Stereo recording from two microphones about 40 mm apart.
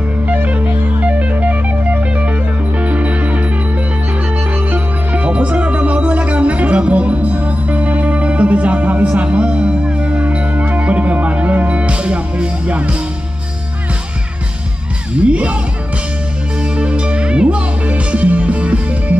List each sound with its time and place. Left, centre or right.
0.3 s music: right
9.1 s music: right
15.1 s music: right
16.6 s music: right